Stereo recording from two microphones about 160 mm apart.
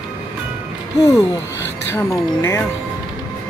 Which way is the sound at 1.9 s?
15° left (ahead or behind).